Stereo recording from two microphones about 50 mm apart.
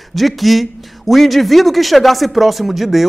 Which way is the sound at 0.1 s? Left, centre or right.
Centre.